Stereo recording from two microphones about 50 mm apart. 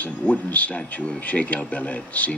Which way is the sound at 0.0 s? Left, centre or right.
Left.